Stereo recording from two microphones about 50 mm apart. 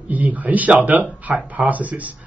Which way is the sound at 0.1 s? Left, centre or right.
Right.